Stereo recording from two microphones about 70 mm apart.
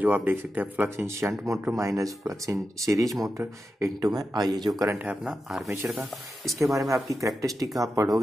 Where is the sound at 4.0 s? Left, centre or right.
Right.